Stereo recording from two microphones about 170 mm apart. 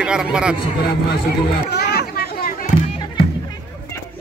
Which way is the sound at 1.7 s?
75° left (ahead or behind).